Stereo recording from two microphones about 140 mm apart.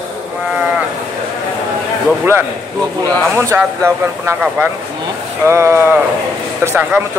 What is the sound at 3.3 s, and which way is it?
Speech, 20° right (ahead or behind).